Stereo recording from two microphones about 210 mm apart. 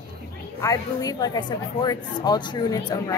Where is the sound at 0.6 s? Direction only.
15° left (ahead or behind).